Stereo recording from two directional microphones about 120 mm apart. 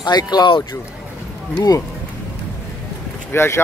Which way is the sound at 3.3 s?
20° left (ahead or behind).